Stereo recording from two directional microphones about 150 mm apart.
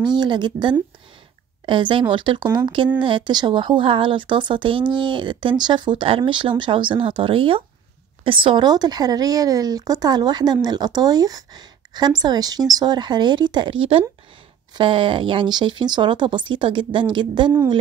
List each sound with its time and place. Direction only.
0.0 s speech: 30° right (ahead or behind)